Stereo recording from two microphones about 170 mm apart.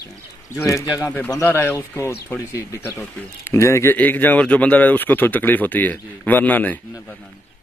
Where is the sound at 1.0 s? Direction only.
10° left (ahead or behind).